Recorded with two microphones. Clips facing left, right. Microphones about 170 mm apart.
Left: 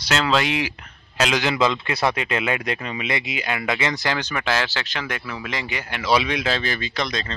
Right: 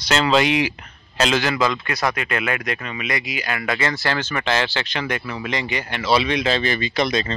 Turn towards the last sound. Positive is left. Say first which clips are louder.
# right 6 dB
turn(degrees=-5)  # may be behind; listen again after turning